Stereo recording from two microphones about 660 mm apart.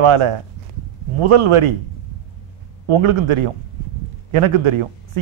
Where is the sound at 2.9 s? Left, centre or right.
Right.